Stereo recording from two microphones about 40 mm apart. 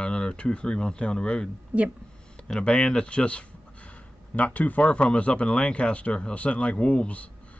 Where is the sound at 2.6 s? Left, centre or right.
Left.